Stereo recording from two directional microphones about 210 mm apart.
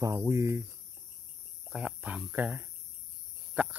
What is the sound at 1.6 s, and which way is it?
Speech, 5° right (ahead or behind).